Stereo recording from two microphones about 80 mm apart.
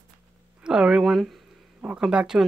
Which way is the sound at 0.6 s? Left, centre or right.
Centre.